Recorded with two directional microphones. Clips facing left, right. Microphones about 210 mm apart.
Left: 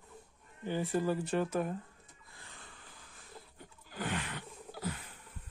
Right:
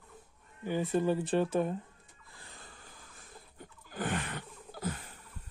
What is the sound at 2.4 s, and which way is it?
Wheeze, 35° right (ahead or behind).